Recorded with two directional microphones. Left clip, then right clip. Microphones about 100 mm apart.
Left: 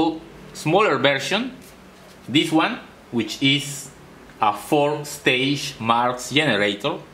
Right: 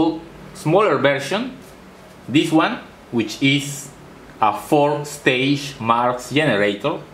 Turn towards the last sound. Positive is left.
turn(degrees=25)  # may be behind; listen again after turning